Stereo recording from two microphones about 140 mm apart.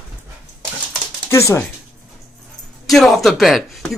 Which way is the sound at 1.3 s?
20° left (ahead or behind).